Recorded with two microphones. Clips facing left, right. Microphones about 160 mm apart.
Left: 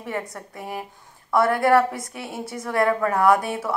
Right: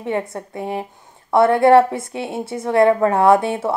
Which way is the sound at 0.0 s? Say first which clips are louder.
Right 7 dB; 25° right (ahead or behind).